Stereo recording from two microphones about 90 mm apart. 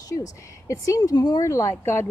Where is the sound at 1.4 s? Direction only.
35° left (ahead or behind).